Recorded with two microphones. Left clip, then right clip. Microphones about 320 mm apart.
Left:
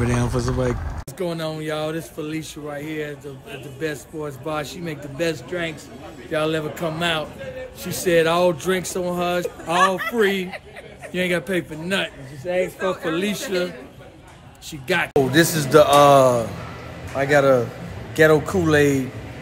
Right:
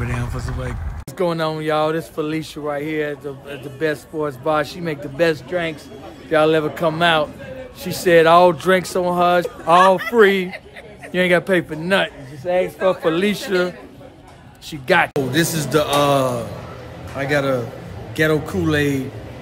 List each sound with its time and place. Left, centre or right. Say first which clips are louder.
0.0 s speech: left 5 dB; centre
1.1 s a man's voice: right 6 dB; centre
14.7 s speech: right 6 dB; centre
15.1 s speech: left 2 dB; centre